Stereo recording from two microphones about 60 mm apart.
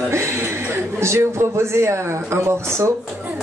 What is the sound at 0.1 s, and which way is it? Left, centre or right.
Speech, right.